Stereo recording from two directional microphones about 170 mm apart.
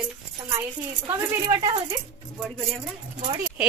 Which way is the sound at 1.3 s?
20° right (ahead or behind).